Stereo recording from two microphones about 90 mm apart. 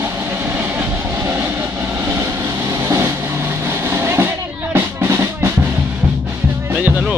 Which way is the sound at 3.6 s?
30° right (ahead or behind).